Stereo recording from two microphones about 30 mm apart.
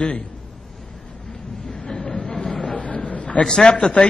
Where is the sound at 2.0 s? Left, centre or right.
Left.